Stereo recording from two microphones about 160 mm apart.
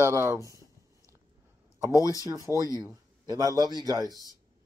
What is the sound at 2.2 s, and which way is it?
Speech, 20° right (ahead or behind).